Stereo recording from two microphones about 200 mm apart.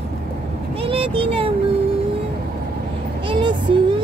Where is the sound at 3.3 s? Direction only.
25° right (ahead or behind).